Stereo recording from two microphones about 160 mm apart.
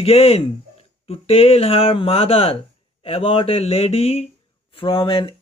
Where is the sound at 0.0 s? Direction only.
40° left (ahead or behind).